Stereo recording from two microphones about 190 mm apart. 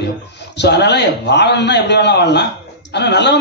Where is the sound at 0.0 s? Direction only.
65° left (ahead or behind).